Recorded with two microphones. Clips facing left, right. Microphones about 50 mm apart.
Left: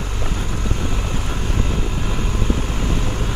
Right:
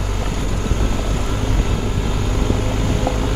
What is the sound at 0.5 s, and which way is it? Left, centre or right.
Vehicle, right.